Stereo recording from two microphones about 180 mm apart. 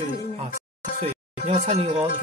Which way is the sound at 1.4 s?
40° right (ahead or behind).